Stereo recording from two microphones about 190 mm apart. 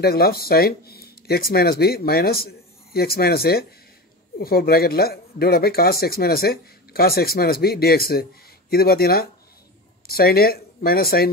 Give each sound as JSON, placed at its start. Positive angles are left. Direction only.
{"t": 0.0, "sound": "speech", "side_deg": 55}